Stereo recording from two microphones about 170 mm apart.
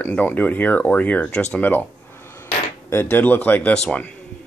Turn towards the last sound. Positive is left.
turn(degrees=5)  # may be behind; listen again after turning